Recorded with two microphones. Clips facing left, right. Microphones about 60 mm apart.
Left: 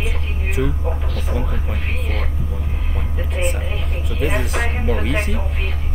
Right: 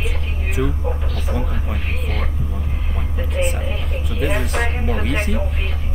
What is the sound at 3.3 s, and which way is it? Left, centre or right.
Speech, centre.